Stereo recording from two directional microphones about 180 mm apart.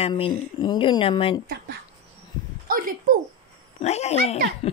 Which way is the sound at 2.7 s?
50° right (ahead or behind).